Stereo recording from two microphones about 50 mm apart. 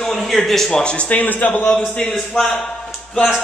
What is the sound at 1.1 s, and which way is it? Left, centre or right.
Speech, left.